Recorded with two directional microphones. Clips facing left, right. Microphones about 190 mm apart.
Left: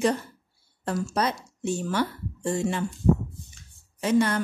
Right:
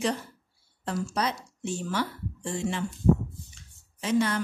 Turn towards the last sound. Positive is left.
turn(degrees=50)  # may be behind; listen again after turning